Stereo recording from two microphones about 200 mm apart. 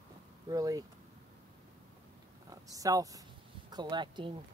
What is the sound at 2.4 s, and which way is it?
Speech, 15° right (ahead or behind).